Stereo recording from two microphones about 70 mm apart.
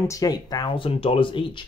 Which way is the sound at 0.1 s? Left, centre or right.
Left.